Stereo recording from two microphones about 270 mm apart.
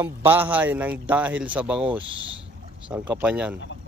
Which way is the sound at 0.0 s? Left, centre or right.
Centre.